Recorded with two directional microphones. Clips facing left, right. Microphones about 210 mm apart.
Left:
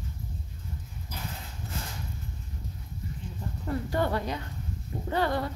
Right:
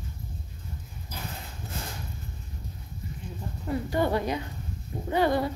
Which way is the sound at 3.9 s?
15° right (ahead or behind).